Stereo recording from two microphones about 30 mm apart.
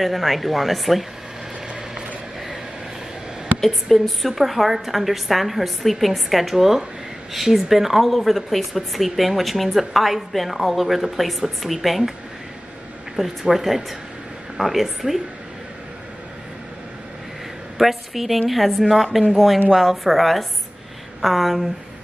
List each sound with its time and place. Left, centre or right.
0.0 s speech: centre
3.6 s speech: centre
13.2 s speech: centre
17.7 s speech: centre